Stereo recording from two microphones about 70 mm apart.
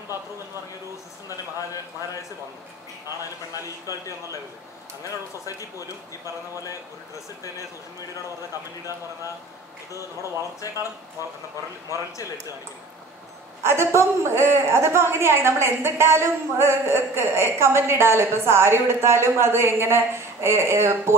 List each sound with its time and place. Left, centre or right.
1.3 s a man's voice: left
3.6 s speech: left
13.6 s a woman's voice: right